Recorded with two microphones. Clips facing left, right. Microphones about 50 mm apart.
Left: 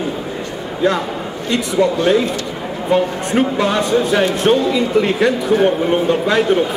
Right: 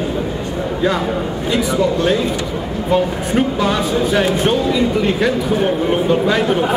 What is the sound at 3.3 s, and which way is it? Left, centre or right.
Speech, centre.